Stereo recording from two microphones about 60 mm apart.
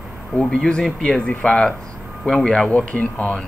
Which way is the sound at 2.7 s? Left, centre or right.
Left.